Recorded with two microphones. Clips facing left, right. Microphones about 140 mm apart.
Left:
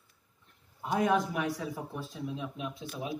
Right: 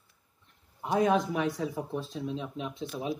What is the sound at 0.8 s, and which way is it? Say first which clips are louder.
Speech: right 2 dB; 25° right (ahead or behind).